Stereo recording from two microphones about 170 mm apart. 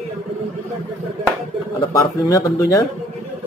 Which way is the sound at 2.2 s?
20° left (ahead or behind).